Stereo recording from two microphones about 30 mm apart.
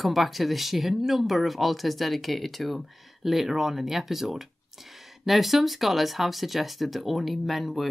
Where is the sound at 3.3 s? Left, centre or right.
Centre.